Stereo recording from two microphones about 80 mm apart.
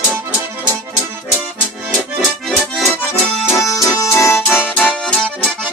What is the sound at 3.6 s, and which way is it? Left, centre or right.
Accordion, left.